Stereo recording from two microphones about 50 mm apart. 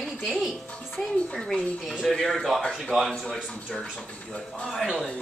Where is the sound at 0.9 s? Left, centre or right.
Centre.